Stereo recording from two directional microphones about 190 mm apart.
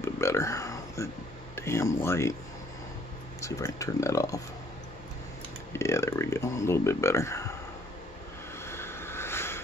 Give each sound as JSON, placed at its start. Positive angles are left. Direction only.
{"t": 0.0, "sound": "a sound", "side_deg": 15}
{"t": 1.5, "sound": "speech", "side_deg": 15}
{"t": 3.3, "sound": "speech", "side_deg": 15}
{"t": 5.7, "sound": "speech", "side_deg": 15}
{"t": 8.6, "sound": "vehicle", "side_deg": 15}